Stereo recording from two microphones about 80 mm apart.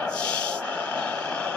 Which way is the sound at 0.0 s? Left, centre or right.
Centre.